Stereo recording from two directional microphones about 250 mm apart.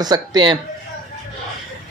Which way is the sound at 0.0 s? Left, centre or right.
Centre.